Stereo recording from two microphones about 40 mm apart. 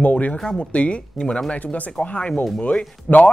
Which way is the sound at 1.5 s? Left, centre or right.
Left.